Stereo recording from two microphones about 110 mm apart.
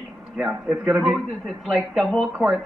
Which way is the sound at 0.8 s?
Centre (ahead or behind).